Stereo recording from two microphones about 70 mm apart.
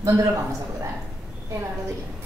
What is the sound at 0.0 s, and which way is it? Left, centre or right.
Speech, right.